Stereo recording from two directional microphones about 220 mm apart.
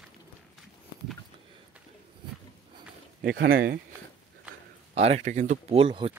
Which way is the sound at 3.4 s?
55° right (ahead or behind).